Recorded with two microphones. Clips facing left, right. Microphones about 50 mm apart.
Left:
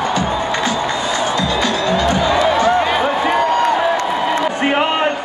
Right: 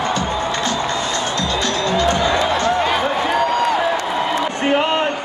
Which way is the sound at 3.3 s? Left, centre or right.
Left.